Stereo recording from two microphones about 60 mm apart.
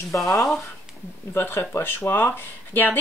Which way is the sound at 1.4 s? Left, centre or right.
Left.